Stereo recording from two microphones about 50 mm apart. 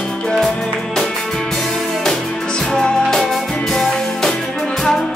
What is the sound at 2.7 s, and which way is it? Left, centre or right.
Music, centre.